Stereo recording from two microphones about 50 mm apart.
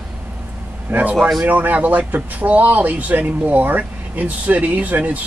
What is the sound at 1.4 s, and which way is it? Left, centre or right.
Speech, right.